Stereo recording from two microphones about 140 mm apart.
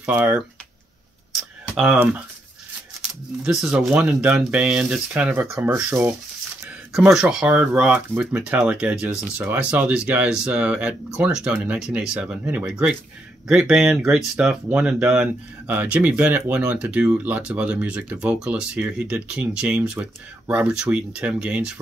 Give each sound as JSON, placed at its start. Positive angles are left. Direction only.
{"t": 0.1, "sound": "speech", "side_deg": -15}
{"t": 1.3, "sound": "a sound", "side_deg": -5}
{"t": 3.4, "sound": "speech", "side_deg": -5}
{"t": 6.9, "sound": "speech", "side_deg": -5}